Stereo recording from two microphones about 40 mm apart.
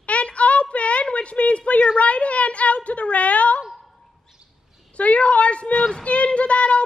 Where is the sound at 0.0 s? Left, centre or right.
Left.